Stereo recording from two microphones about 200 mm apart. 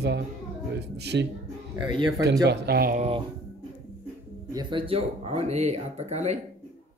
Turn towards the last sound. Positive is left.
turn(degrees=-35)  # may be behind; listen again after turning